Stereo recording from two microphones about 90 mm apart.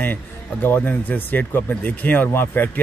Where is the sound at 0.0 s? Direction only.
20° left (ahead or behind).